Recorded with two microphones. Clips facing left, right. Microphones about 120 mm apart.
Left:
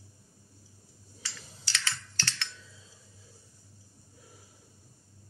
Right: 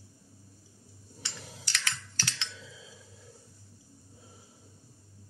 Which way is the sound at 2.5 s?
90° right.